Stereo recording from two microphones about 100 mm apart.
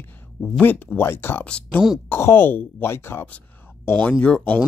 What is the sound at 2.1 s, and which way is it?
Speech, 25° left (ahead or behind).